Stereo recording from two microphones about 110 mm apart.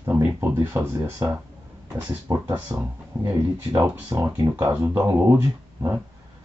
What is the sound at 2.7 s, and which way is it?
Speech, 30° right (ahead or behind).